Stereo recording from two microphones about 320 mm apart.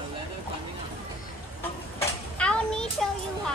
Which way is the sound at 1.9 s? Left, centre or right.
Centre.